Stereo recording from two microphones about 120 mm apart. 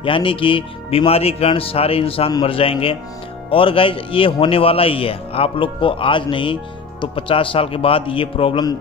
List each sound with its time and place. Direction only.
0.0 s a man's voice: 45° left (ahead or behind)